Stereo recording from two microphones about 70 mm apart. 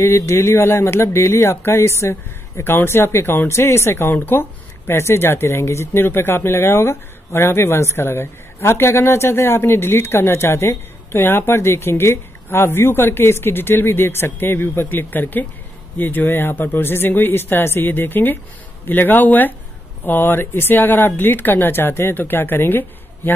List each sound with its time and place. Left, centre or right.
0.0 s speech: left